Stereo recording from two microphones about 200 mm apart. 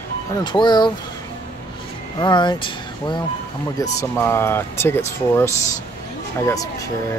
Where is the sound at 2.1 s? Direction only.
20° left (ahead or behind).